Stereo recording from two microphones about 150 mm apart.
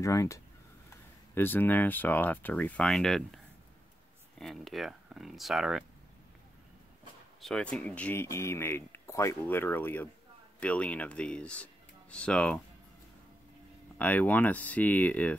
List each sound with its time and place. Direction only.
0.0 s speech: 20° left (ahead or behind); by 3.3 s centre (ahead or behind)
4.4 s speech: centre (ahead or behind)
7.4 s speech: 5° left (ahead or behind)
13.9 s speech: 10° left (ahead or behind)